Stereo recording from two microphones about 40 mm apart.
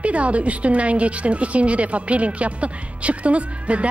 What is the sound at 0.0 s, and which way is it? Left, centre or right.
A woman's voice, right.